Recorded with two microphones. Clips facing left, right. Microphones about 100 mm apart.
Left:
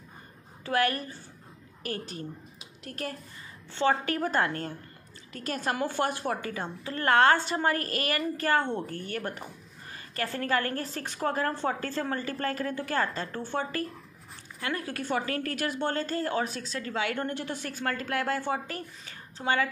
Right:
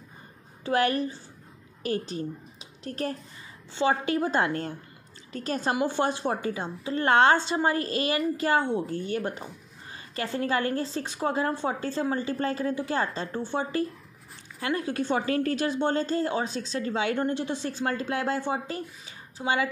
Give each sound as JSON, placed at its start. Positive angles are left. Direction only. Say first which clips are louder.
{"t": 0.7, "sound": "a woman's voice", "louder": "right 3 dB", "side_deg": -25}